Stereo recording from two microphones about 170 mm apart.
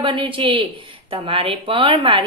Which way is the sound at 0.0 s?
30° right (ahead or behind).